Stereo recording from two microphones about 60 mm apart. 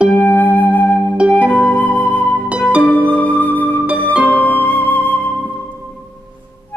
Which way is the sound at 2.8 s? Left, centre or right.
Left.